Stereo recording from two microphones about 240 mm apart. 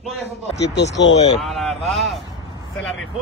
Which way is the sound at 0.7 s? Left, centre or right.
Left.